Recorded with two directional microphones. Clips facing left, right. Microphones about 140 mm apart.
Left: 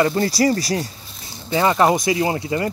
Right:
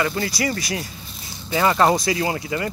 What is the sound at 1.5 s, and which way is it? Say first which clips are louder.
Speech: left 1 dB; 20° left (ahead or behind).